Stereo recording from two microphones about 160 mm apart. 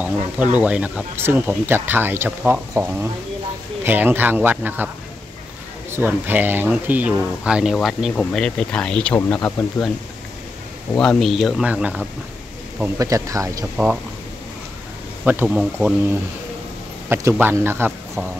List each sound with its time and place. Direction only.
0.0 s speech: 10° right (ahead or behind)
5.9 s speech: 15° right (ahead or behind); by 9.8 s 5° left (ahead or behind)
11.0 s speech: 5° left (ahead or behind); by 13.7 s 20° right (ahead or behind)
15.2 s speech: 10° right (ahead or behind)
17.1 s speech: 15° right (ahead or behind)